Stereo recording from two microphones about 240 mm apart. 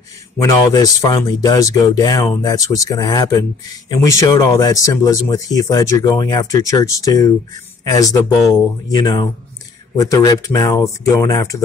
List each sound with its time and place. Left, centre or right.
0.4 s a man's voice: centre